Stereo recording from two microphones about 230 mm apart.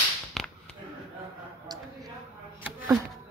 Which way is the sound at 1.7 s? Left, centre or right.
Centre.